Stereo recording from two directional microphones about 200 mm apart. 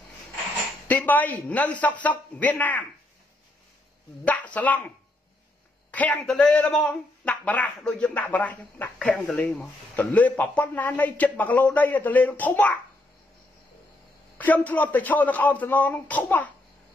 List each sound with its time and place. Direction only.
0.8 s a man's voice: 10° left (ahead or behind)
4.3 s a man's voice: 5° left (ahead or behind)
14.4 s a man's voice: 10° left (ahead or behind)